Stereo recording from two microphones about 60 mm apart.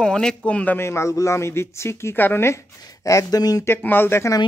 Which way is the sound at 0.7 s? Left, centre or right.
Left.